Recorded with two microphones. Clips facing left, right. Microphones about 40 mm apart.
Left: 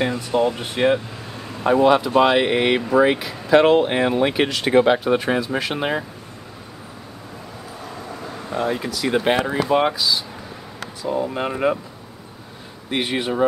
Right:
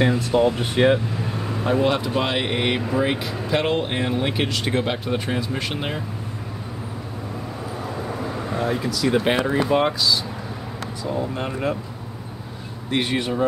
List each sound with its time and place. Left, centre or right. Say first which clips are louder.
0.0 s speech: right 1 dB; centre
8.5 s speech: left 2 dB; centre
12.9 s speech: even; centre